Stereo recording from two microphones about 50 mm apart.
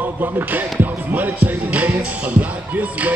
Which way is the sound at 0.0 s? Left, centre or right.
Right.